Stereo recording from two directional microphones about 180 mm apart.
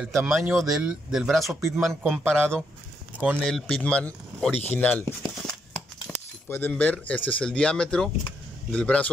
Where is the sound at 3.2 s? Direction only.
5° right (ahead or behind).